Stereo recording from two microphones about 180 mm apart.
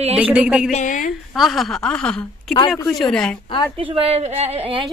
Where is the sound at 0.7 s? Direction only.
45° left (ahead or behind).